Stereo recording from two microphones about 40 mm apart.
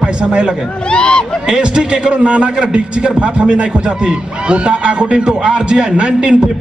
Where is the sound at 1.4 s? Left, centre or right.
Centre.